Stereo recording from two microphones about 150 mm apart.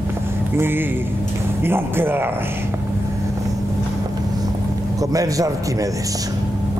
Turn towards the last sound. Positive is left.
turn(degrees=-20)  # may be behind; listen again after turning